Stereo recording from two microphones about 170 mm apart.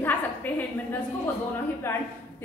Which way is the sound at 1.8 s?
15° left (ahead or behind).